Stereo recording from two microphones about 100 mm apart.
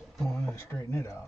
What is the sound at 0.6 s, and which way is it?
Speech, 25° left (ahead or behind).